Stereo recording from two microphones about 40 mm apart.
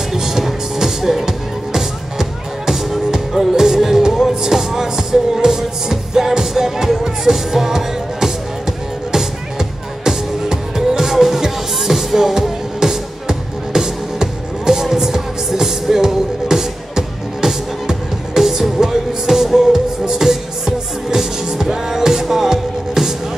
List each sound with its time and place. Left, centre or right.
0.1 s music: centre